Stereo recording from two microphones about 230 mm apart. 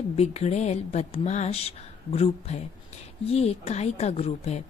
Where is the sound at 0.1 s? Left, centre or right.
Left.